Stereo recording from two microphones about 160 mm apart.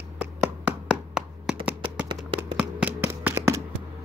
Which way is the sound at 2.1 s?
5° right (ahead or behind).